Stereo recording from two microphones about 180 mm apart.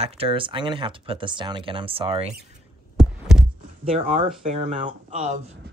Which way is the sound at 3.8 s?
35° right (ahead or behind).